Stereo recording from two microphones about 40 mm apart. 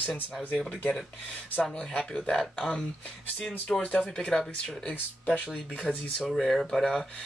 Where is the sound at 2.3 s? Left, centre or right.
Centre.